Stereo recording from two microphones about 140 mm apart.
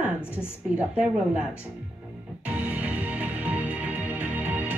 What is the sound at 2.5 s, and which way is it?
Music, 10° right (ahead or behind).